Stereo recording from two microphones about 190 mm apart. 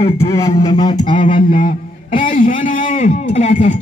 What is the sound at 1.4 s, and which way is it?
A man's voice, 45° left (ahead or behind).